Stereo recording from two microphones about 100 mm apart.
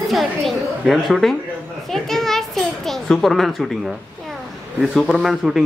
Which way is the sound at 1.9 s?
5° left (ahead or behind).